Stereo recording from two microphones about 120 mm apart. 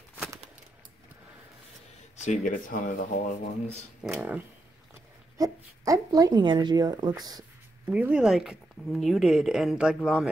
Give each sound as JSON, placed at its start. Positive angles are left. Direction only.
{"t": 2.2, "sound": "speech", "side_deg": 90}
{"t": 4.1, "sound": "speech", "side_deg": -20}
{"t": 5.4, "sound": "speech", "side_deg": -30}
{"t": 7.8, "sound": "speech", "side_deg": -15}